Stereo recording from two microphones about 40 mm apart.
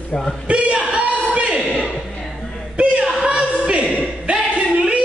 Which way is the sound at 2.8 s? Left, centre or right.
Right.